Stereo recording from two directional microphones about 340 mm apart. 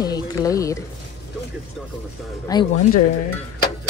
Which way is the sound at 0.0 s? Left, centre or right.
Centre.